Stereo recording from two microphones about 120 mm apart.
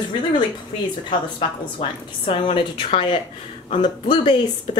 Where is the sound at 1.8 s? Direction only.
45° left (ahead or behind).